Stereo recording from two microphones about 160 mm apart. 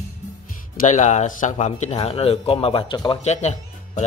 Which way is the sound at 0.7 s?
50° left (ahead or behind).